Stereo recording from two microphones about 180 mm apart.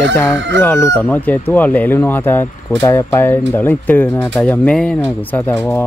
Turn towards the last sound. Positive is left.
turn(degrees=5)  # may be behind; listen again after turning